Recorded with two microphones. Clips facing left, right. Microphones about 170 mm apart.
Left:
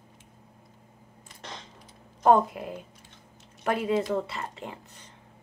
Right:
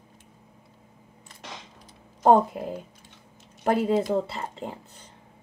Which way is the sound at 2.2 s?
25° right (ahead or behind).